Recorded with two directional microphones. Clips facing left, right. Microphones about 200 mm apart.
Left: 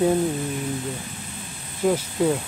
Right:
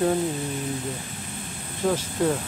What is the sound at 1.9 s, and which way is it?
Speech, 10° left (ahead or behind).